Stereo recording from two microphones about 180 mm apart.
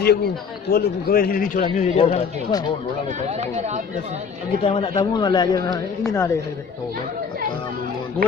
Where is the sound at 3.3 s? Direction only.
35° right (ahead or behind).